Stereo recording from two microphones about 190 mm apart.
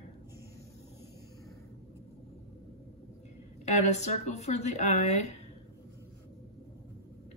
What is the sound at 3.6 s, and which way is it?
Speech, 35° left (ahead or behind).